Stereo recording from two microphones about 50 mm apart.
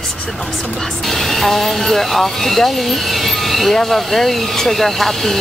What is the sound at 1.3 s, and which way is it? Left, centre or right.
Speech, centre.